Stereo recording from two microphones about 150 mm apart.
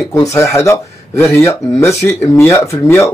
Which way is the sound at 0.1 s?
20° left (ahead or behind).